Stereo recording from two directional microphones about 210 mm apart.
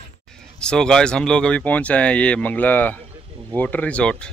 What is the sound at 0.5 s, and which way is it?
Speech, 5° left (ahead or behind).